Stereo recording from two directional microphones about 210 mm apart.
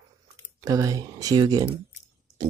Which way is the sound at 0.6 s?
15° right (ahead or behind).